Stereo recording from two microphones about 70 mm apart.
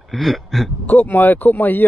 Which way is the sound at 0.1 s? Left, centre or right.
Centre.